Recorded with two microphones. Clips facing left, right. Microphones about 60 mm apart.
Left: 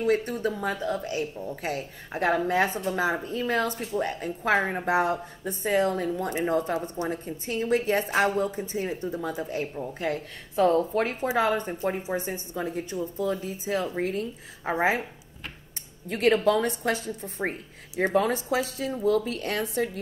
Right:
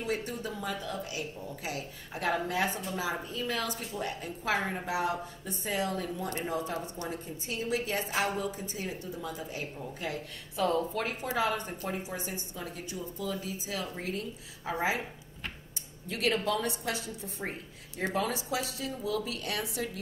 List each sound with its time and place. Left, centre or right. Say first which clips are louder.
0.0 s a woman's voice: left 9 dB; left
6.7 s a woman's voice: left 7 dB; left
16.1 s a woman's voice: left 8 dB; left